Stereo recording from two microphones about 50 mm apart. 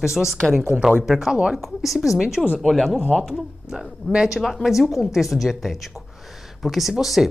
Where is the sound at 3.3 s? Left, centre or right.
Centre.